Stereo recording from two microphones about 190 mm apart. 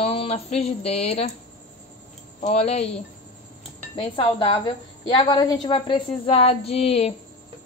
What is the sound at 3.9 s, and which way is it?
Speech, 25° left (ahead or behind).